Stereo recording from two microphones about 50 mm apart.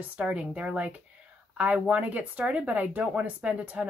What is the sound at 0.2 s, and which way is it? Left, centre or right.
Speech, right.